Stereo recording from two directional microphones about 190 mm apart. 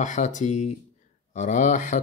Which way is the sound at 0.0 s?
40° left (ahead or behind).